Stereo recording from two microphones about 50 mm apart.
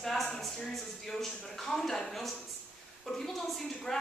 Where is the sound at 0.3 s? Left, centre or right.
Centre.